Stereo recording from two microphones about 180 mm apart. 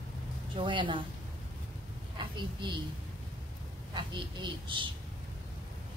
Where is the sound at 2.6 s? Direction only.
25° right (ahead or behind).